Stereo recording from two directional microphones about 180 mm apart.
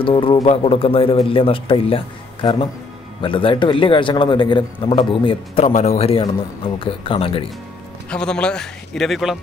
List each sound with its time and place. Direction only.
0.0 s a man's voice: 30° left (ahead or behind)
8.1 s a man's voice: 5° left (ahead or behind)